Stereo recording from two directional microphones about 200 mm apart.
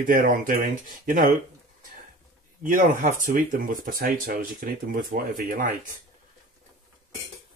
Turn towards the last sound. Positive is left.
turn(degrees=-40)  # may be behind; listen again after turning